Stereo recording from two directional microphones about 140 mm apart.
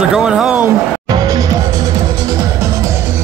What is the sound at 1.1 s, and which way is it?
Music, 30° right (ahead or behind).